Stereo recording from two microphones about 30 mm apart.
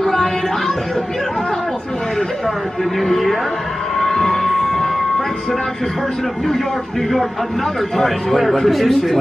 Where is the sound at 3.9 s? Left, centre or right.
Centre.